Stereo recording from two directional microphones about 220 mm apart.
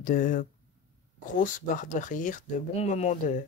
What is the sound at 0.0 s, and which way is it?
Speech, 40° left (ahead or behind).